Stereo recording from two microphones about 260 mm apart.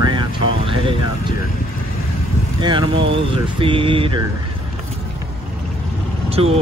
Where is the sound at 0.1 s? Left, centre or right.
Centre.